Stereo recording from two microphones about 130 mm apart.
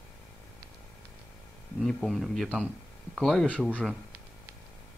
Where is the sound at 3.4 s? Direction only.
10° right (ahead or behind).